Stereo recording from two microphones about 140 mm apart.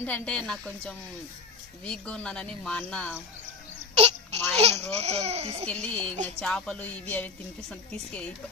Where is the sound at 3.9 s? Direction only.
50° right (ahead or behind).